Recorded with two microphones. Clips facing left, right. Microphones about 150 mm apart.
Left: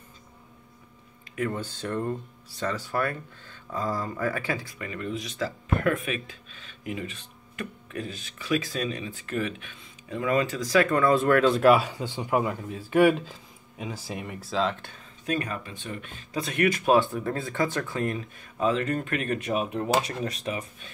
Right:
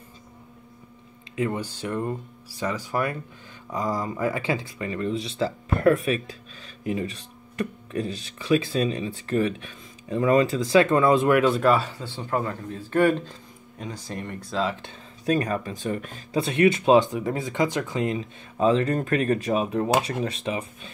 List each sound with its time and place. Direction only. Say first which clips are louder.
1.3 s speech: right 3 dB; 15° right (ahead or behind)
11.5 s speech: left 2 dB; 10° left (ahead or behind)
15.2 s speech: right 6 dB; 40° right (ahead or behind); by 18.2 s 20° right (ahead or behind)
18.6 s speech: right 4 dB; 30° right (ahead or behind)